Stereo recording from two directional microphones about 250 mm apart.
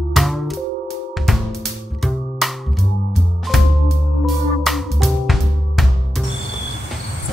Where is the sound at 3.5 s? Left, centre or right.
Centre.